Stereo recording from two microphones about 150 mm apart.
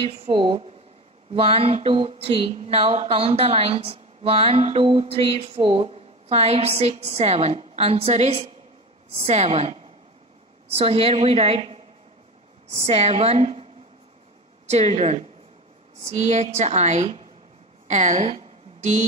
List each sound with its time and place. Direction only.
0.0 s speech: 40° right (ahead or behind)
10.8 s speech: 40° right (ahead or behind)
14.7 s speech: 45° right (ahead or behind)
17.8 s a sound: 55° right (ahead or behind)